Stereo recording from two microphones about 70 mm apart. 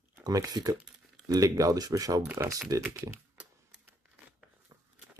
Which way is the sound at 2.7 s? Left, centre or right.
Right.